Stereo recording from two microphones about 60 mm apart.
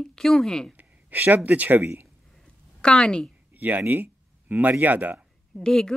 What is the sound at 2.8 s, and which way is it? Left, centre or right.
Speech, centre.